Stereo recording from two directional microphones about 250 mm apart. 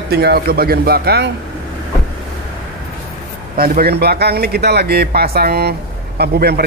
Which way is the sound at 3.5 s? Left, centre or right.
Right.